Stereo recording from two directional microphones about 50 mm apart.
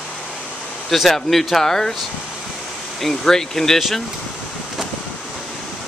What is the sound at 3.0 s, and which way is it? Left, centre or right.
Speech, centre.